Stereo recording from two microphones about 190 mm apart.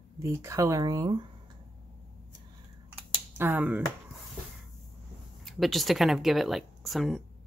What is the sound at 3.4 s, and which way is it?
Speech, 10° right (ahead or behind).